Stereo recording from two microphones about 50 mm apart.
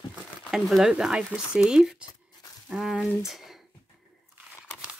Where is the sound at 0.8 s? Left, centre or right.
Centre.